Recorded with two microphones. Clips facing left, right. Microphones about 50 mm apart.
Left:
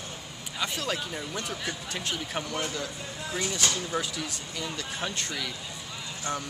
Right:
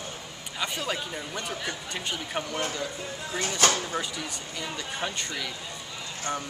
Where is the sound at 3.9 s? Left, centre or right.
Centre.